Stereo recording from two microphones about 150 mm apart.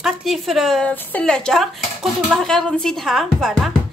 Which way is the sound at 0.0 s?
Centre (ahead or behind).